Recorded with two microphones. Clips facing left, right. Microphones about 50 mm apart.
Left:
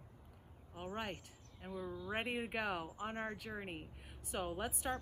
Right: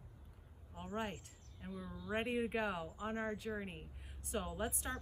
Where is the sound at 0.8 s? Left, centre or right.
Left.